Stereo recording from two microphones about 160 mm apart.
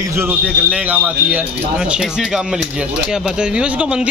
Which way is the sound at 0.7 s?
10° right (ahead or behind).